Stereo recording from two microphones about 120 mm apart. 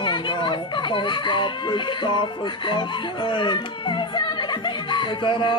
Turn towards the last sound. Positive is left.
turn(degrees=40)  # may be behind; listen again after turning